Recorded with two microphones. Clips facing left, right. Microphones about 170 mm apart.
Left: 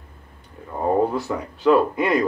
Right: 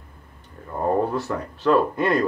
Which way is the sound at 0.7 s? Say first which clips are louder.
Left 2 dB; 5° left (ahead or behind).